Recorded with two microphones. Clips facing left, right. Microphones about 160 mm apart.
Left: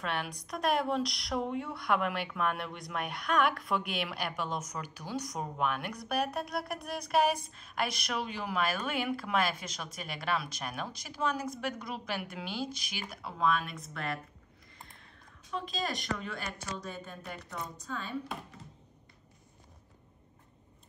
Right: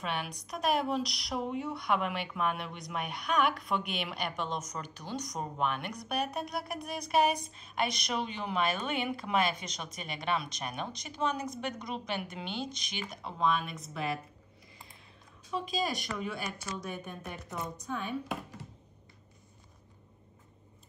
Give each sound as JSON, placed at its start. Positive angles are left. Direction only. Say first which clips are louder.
{"t": 0.0, "sound": "a woman's voice", "louder": "even", "side_deg": 0}
{"t": 15.5, "sound": "a woman's voice", "louder": "right 3 dB", "side_deg": -10}